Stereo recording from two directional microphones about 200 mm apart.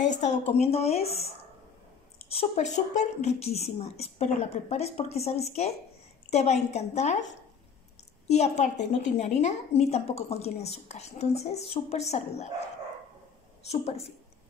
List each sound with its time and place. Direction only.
0.0 s a woman's voice: 35° left (ahead or behind)
8.3 s a woman's voice: 35° left (ahead or behind)
13.7 s a woman's voice: 30° left (ahead or behind)